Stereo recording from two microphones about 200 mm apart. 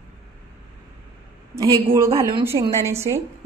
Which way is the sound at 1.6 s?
15° right (ahead or behind).